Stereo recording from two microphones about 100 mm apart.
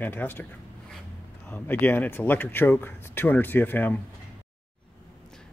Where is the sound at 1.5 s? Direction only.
15° left (ahead or behind).